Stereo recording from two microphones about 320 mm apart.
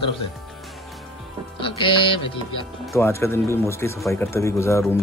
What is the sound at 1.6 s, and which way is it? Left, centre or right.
Speech, centre.